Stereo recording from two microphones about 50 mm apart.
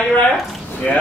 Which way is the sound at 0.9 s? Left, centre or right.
Left.